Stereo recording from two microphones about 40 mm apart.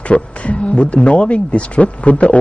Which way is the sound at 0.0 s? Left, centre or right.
Left.